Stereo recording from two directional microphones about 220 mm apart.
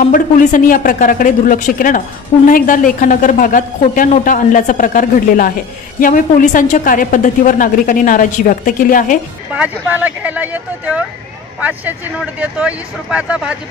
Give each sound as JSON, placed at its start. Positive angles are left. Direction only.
{"t": 0.0, "sound": "speech", "side_deg": 35}
{"t": 9.6, "sound": "speech", "side_deg": -5}